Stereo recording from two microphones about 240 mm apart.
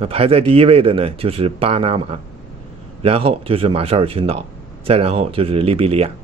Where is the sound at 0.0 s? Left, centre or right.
Right.